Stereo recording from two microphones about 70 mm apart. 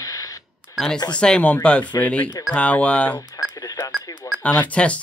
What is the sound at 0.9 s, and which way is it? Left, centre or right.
Speech, left.